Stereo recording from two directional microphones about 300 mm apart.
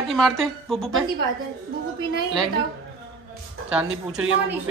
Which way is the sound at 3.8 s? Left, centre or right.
Right.